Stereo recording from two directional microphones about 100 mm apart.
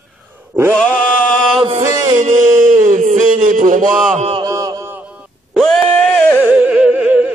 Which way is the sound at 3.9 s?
Centre (ahead or behind).